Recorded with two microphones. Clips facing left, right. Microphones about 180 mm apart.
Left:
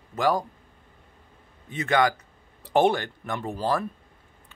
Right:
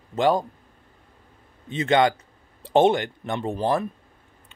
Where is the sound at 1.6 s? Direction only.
25° right (ahead or behind).